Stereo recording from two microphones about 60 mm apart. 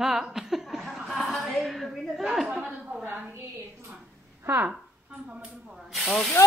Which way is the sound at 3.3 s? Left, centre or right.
Right.